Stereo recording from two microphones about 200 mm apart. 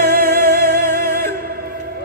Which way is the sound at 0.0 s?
50° right (ahead or behind).